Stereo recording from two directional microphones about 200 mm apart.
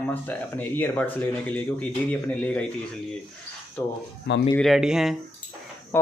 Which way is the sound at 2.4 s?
5° left (ahead or behind).